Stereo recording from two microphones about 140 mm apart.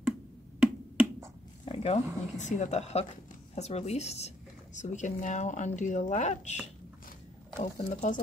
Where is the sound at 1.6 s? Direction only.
40° left (ahead or behind).